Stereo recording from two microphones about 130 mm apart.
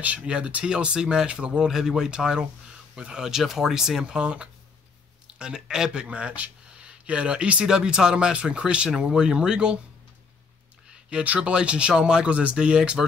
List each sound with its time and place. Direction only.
0.0 s speech: 10° right (ahead or behind)
11.1 s speech: 10° right (ahead or behind)